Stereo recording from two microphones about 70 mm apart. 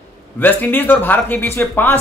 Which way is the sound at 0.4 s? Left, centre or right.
Left.